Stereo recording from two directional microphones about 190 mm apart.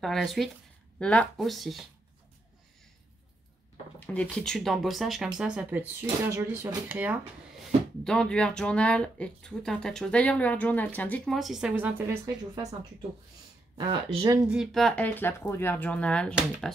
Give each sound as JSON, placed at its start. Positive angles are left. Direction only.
{"t": 0.0, "sound": "speech", "side_deg": 0}
{"t": 4.0, "sound": "speech", "side_deg": 5}
{"t": 8.0, "sound": "speech", "side_deg": 5}
{"t": 13.7, "sound": "speech", "side_deg": -25}
{"t": 14.5, "sound": "speech", "side_deg": 0}